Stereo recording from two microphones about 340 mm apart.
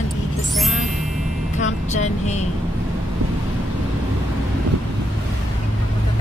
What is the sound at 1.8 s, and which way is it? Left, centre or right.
Vehicle, centre.